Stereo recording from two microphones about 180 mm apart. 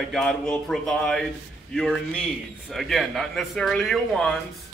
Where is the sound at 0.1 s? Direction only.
Centre (ahead or behind).